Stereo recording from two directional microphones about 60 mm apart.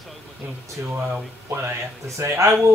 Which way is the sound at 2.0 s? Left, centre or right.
Right.